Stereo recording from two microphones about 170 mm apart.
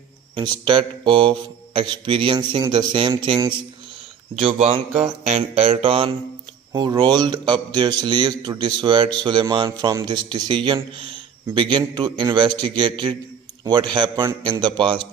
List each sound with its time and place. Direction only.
0.4 s a man's voice: 30° right (ahead or behind)
5.0 s music: 40° right (ahead or behind)
6.7 s a man's voice: 25° right (ahead or behind)